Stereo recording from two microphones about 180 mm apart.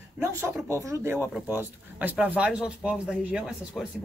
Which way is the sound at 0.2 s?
15° right (ahead or behind).